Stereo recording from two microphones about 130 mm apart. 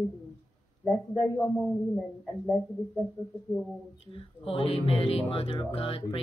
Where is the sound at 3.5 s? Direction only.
15° right (ahead or behind).